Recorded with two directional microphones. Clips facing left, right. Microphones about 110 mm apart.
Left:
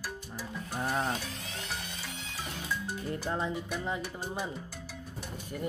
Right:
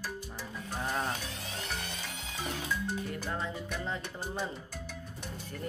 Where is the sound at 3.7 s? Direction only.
10° left (ahead or behind).